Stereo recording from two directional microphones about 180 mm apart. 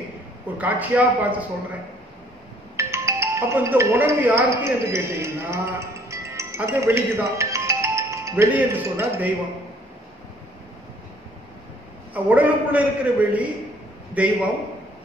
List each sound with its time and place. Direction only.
0.6 s a man's voice: 10° right (ahead or behind)
2.7 s speech: 15° right (ahead or behind)
12.1 s a man's voice: 10° right (ahead or behind)